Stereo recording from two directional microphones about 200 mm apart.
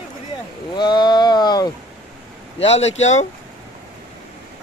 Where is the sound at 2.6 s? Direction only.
30° left (ahead or behind).